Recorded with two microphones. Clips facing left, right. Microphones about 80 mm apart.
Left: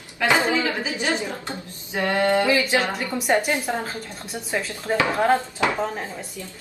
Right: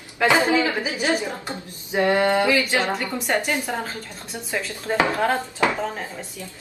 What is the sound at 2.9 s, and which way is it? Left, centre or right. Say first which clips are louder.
Speech: right 1 dB; right.